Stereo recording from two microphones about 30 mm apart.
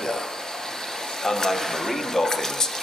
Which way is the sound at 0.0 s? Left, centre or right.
Centre.